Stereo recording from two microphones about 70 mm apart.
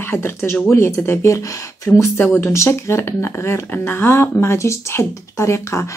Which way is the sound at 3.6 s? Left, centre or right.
Left.